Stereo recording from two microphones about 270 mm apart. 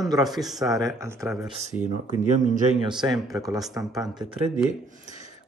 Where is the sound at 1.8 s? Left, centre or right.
Right.